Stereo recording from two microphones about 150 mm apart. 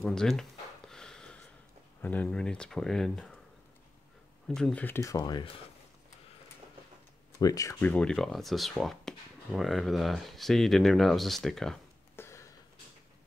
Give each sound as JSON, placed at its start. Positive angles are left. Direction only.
{"t": 0.0, "sound": "a sound", "side_deg": 5}
{"t": 2.0, "sound": "speech", "side_deg": 10}
{"t": 4.5, "sound": "speech", "side_deg": 5}
{"t": 7.3, "sound": "speech", "side_deg": 25}
{"t": 7.8, "sound": "speech", "side_deg": 10}
{"t": 12.2, "sound": "a sound", "side_deg": 20}